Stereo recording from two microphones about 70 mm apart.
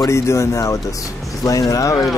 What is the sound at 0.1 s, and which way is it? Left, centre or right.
Speech, left.